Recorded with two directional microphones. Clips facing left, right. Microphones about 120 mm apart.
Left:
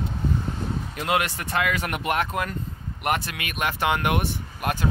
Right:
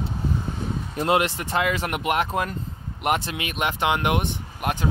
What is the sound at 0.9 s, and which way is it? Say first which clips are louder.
Speech: right 4 dB; 25° right (ahead or behind).